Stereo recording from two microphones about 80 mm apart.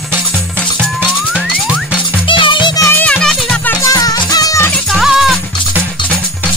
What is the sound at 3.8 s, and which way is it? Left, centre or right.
Music, left.